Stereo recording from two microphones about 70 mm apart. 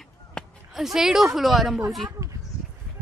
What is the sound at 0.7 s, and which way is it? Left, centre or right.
Speech, centre.